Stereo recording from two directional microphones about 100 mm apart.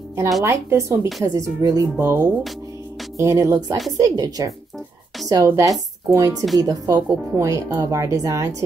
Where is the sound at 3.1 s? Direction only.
30° right (ahead or behind).